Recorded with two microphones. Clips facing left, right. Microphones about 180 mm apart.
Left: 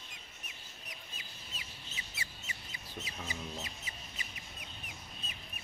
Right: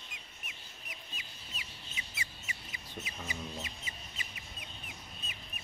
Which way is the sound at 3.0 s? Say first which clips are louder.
Right 1 dB; 20° right (ahead or behind).